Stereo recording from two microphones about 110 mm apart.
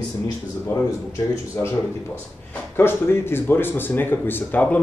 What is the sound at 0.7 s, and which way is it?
Speech, 30° left (ahead or behind).